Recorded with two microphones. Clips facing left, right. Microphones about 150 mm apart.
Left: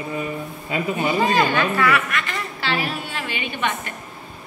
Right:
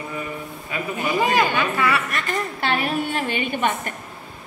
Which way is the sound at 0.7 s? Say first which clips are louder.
Left 4 dB; 25° left (ahead or behind).